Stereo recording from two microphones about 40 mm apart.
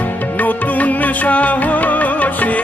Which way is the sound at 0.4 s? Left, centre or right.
Left.